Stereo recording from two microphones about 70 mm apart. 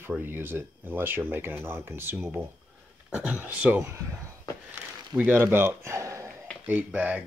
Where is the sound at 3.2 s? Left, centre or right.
Right.